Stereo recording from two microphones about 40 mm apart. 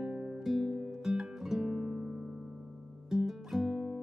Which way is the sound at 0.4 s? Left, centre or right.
Centre.